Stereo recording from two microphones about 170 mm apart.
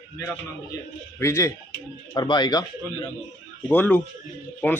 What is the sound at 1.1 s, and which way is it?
Speech, 15° left (ahead or behind).